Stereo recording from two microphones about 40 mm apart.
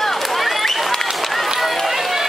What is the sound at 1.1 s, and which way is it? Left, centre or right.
Run, centre.